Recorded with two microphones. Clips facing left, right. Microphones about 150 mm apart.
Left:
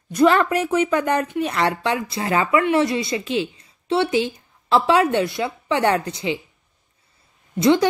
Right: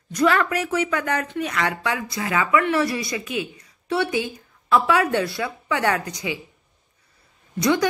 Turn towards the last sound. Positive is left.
turn(degrees=25)  # may be behind; listen again after turning